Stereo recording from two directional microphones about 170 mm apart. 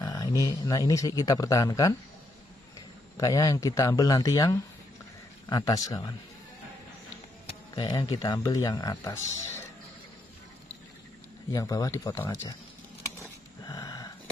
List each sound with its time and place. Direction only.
0.0 s speech: 20° left (ahead or behind)
3.2 s speech: 20° left (ahead or behind)
7.7 s speech: 25° left (ahead or behind)
11.5 s speech: 20° left (ahead or behind)
13.2 s dog: 20° left (ahead or behind)